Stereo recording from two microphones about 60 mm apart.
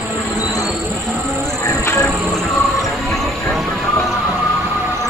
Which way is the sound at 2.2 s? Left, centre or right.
Centre.